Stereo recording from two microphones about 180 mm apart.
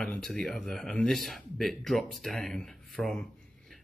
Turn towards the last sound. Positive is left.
turn(degrees=0)  # may be behind; listen again after turning